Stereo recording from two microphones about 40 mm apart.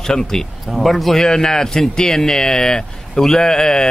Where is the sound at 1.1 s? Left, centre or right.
Centre.